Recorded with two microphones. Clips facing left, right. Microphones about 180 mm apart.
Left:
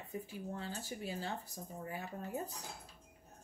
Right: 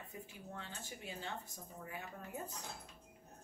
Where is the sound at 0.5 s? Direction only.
35° left (ahead or behind).